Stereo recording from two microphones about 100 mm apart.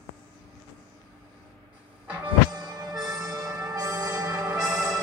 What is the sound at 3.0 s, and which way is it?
Music, 35° right (ahead or behind).